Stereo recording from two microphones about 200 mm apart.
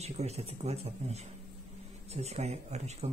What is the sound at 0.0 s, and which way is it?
A man's voice, 30° right (ahead or behind).